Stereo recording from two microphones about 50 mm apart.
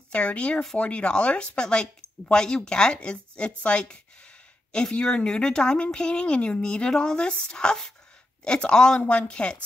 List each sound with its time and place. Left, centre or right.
0.1 s speech: left